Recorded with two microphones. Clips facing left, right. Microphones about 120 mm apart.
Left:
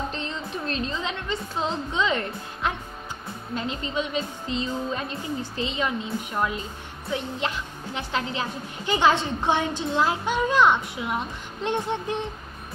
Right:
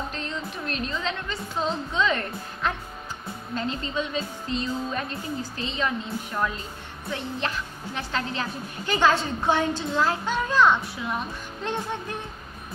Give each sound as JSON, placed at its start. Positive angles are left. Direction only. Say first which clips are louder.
{"t": 0.1, "sound": "a woman's voice", "louder": "left 1 dB", "side_deg": 25}